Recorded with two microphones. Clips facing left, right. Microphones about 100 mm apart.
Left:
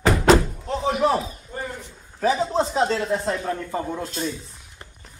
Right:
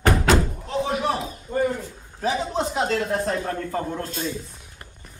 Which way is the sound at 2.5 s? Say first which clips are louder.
Left 2 dB; 30° left (ahead or behind).